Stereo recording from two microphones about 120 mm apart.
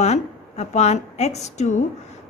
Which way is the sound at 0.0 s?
70° left (ahead or behind).